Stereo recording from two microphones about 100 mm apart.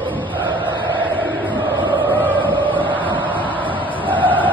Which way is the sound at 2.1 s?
15° left (ahead or behind).